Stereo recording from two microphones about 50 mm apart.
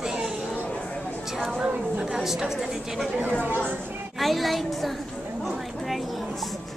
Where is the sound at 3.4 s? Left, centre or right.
Right.